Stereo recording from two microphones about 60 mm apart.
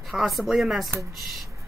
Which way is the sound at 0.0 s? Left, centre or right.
Centre.